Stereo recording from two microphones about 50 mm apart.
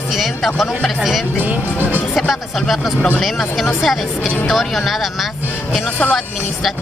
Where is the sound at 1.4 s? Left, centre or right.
Right.